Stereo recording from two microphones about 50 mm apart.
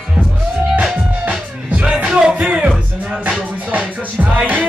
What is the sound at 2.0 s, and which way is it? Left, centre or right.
Music, centre.